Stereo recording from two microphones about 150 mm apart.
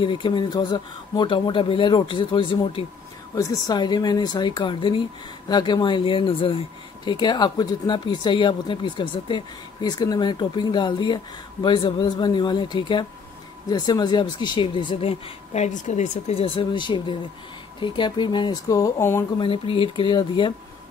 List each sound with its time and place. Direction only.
0.0 s speech: 35° left (ahead or behind); by 19.2 s 15° left (ahead or behind)
19.3 s speech: 35° left (ahead or behind)